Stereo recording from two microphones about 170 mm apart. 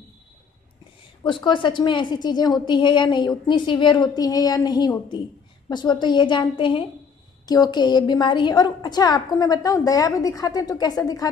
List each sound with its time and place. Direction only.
1.2 s a woman's voice: 30° left (ahead or behind)